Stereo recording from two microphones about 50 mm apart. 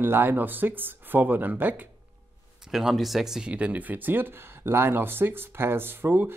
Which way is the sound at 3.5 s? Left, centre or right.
Right.